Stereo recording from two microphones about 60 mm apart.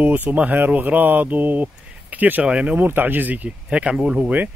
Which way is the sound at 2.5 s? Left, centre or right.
Centre.